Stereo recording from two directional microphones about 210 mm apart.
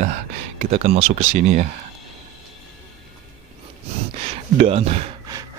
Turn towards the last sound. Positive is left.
turn(degrees=-30)  # may be behind; listen again after turning